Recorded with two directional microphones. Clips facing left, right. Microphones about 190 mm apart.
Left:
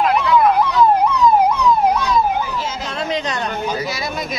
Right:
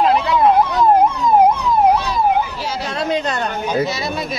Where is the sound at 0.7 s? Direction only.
50° right (ahead or behind).